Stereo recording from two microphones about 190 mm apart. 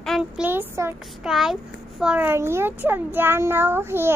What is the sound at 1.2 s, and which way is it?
A child's voice, centre (ahead or behind).